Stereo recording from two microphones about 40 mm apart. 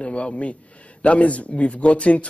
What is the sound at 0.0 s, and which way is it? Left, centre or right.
Speech, left.